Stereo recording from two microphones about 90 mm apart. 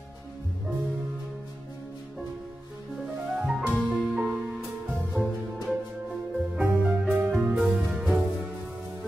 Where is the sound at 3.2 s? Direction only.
5° right (ahead or behind).